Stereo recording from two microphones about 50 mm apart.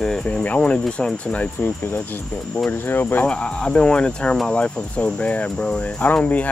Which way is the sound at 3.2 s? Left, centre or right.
Centre.